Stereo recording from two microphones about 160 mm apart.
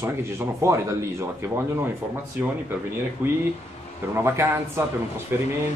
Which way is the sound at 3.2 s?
10° right (ahead or behind).